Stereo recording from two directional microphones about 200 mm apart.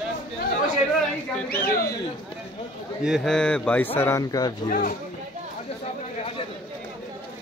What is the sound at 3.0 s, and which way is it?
Speech, centre (ahead or behind).